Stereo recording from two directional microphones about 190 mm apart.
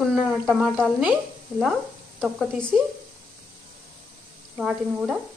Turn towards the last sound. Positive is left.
turn(degrees=-5)  # may be behind; listen again after turning